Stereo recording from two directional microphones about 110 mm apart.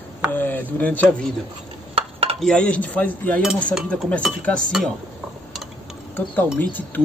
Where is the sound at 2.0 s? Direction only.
65° right (ahead or behind).